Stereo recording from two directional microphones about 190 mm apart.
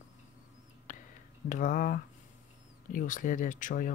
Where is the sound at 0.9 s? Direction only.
40° left (ahead or behind).